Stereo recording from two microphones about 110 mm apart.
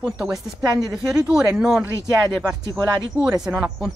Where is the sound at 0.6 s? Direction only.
30° right (ahead or behind).